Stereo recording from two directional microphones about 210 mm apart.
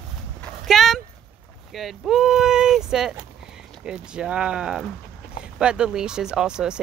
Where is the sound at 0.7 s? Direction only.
Centre (ahead or behind).